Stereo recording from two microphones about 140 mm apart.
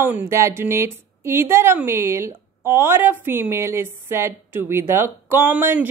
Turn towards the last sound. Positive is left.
turn(degrees=-15)  # may be behind; listen again after turning